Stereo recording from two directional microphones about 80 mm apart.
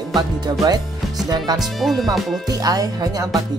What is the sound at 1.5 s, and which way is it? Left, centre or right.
Speech, centre.